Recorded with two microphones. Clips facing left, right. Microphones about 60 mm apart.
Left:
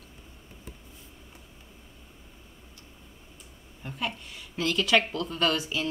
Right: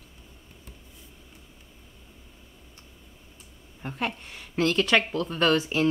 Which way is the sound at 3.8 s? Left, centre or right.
Right.